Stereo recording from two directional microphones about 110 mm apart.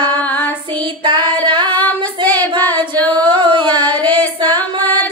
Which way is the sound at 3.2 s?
45° right (ahead or behind).